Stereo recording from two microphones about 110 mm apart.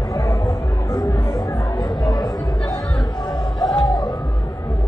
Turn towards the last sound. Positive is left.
turn(degrees=45)  # may be behind; listen again after turning